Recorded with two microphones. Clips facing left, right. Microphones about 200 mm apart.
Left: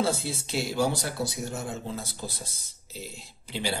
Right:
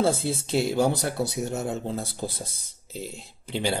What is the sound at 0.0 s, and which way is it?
Speech, 50° right (ahead or behind).